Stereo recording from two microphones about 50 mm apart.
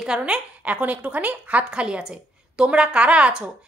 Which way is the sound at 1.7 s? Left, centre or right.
Centre.